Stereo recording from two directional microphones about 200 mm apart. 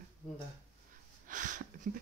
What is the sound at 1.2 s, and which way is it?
Speech, 40° right (ahead or behind).